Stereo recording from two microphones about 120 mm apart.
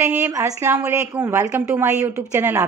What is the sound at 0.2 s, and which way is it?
A woman's voice, 25° right (ahead or behind).